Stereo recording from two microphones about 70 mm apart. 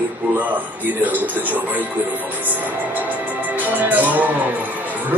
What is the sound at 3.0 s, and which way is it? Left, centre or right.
Music, right.